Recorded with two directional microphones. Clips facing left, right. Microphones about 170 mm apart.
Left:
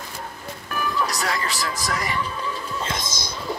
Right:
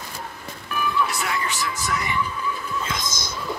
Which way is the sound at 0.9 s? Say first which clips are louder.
Left 1 dB; 40° left (ahead or behind).